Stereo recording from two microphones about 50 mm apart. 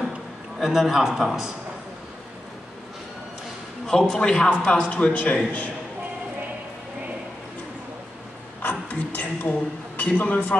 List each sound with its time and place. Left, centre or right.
0.6 s a man's voice: centre
3.8 s a man's voice: centre; by 5.7 s left
8.6 s a sound: left